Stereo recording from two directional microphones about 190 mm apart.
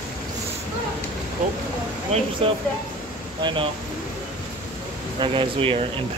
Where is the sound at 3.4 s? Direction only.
25° right (ahead or behind).